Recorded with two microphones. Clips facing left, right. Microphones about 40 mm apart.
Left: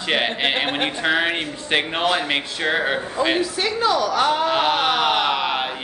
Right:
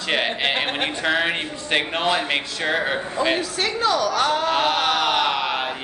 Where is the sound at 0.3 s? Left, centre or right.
Centre.